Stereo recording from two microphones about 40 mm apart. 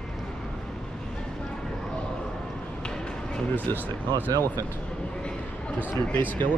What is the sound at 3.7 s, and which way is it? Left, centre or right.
Speech, left.